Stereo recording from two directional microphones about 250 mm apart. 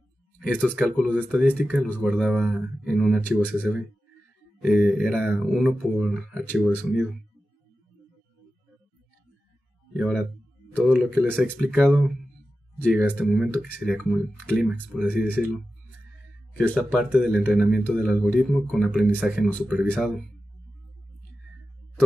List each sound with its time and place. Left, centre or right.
0.4 s speech: centre
3.5 s speech: centre
9.9 s speech: centre
16.5 s speech: centre